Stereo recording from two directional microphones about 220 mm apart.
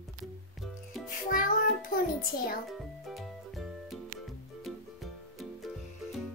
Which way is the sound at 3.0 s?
Centre (ahead or behind).